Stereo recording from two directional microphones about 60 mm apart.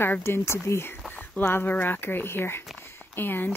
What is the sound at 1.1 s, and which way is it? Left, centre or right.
Speech, left.